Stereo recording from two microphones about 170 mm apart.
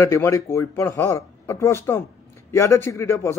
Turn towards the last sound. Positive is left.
turn(degrees=15)  # may be behind; listen again after turning